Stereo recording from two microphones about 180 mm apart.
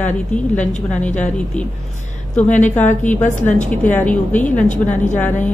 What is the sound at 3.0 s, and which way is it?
A woman's voice, 10° left (ahead or behind).